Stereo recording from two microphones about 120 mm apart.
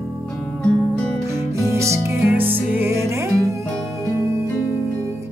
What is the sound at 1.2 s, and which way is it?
Music, 25° right (ahead or behind).